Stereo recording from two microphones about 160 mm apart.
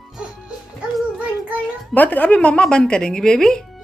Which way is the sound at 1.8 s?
10° left (ahead or behind).